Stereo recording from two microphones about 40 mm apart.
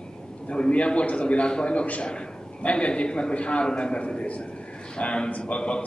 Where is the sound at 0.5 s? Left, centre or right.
Left.